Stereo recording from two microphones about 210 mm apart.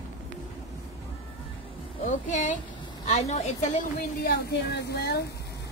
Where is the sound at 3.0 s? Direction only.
30° left (ahead or behind); by 5.2 s 50° left (ahead or behind).